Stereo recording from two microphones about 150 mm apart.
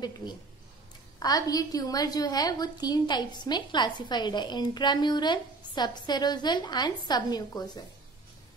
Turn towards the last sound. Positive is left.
turn(degrees=25)  # may be behind; listen again after turning